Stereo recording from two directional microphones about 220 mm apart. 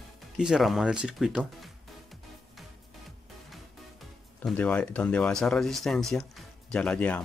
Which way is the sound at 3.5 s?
Centre (ahead or behind).